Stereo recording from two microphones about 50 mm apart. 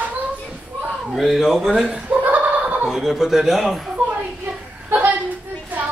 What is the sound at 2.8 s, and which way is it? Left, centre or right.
Speech, centre.